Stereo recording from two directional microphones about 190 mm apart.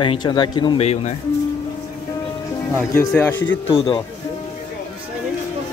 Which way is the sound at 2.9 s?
10° left (ahead or behind).